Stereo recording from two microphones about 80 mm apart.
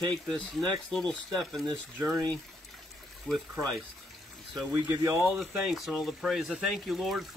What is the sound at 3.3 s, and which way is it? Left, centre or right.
Speech, centre.